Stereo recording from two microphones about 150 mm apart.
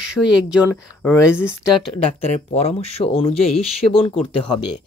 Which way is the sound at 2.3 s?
50° left (ahead or behind).